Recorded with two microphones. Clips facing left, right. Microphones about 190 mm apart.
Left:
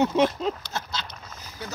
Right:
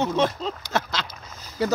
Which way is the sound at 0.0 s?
15° left (ahead or behind).